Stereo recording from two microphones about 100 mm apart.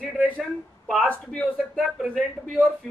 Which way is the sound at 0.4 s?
5° left (ahead or behind).